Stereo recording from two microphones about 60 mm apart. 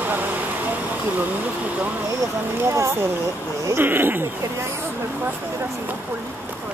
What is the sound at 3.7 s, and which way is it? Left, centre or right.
Speech, right.